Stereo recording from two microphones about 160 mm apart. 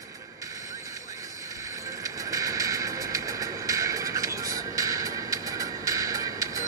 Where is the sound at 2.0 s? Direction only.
20° right (ahead or behind).